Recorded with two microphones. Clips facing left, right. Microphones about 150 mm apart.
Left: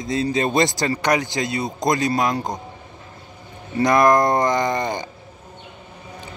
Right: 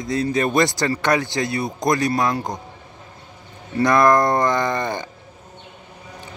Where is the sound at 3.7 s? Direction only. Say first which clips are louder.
Even; 20° left (ahead or behind).